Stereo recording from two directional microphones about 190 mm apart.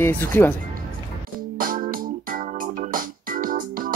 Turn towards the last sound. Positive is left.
turn(degrees=-45)  # may be behind; listen again after turning